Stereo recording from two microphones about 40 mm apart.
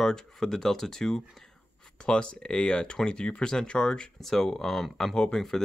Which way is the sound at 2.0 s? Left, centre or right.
Left.